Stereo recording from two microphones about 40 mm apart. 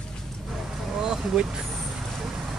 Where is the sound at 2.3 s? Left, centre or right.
Centre.